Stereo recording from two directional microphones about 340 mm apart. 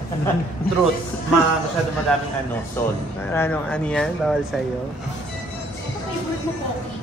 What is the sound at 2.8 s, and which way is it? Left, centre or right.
Speech, centre.